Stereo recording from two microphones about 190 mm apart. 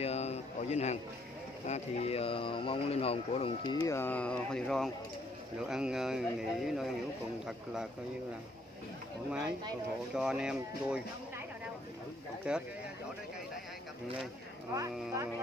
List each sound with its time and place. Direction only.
0.0 s a sound: 35° left (ahead or behind)
1.7 s speech: 35° left (ahead or behind)
3.8 s speech: 15° left (ahead or behind); by 7.9 s 5° right (ahead or behind)
10.1 s speech: 5° right (ahead or behind)
12.5 s speech: 5° right (ahead or behind)
14.7 s speech: 20° right (ahead or behind)